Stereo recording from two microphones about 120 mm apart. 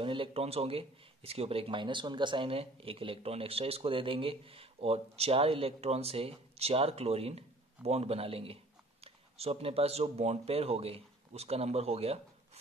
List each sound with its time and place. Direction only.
0.0 s speech: 45° right (ahead or behind)